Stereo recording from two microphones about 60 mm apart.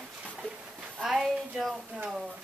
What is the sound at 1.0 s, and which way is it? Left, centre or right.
Speech, centre.